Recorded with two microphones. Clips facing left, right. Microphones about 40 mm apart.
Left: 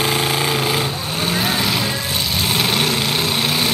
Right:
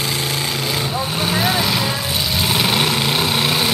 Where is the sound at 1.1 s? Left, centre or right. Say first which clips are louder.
Even; centre.